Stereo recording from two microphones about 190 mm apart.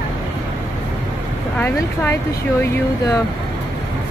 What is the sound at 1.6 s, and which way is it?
Speech, 10° left (ahead or behind).